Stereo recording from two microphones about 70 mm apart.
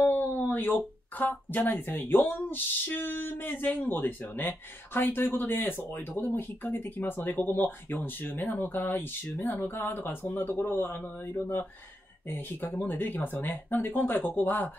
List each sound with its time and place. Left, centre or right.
0.0 s speech: left